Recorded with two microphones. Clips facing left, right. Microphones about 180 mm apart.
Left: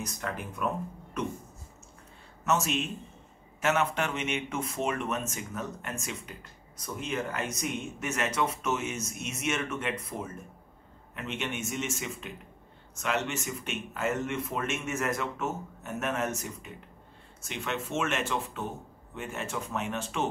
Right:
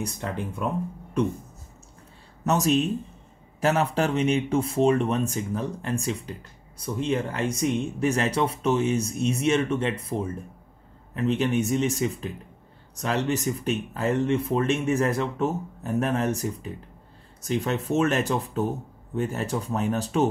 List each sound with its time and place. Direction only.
0.0 s speech: 30° right (ahead or behind)
2.4 s speech: 35° right (ahead or behind)